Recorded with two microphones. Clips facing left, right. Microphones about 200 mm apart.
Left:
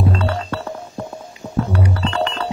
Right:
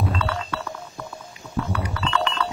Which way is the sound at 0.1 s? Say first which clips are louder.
Left 5 dB; 40° left (ahead or behind).